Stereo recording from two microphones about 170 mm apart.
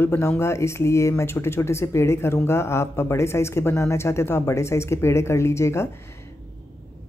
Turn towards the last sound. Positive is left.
turn(degrees=15)  # may be behind; listen again after turning